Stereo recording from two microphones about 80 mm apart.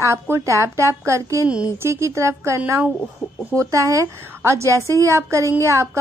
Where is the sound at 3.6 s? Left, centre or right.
Right.